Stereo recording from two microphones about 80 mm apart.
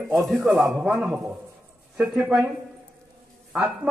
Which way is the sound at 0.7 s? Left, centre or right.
Centre.